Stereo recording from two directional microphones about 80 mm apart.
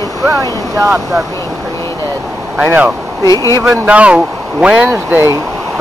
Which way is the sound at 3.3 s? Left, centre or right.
Left.